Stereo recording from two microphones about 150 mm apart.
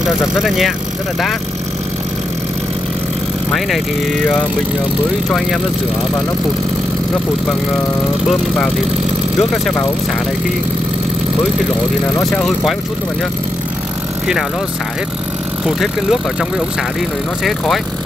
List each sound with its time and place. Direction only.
0.0 s speech: 5° right (ahead or behind)
12.4 s speech: centre (ahead or behind)
15.6 s speech: centre (ahead or behind)